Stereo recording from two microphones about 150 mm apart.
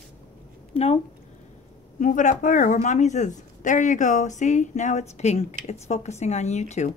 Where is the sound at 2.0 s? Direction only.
55° left (ahead or behind).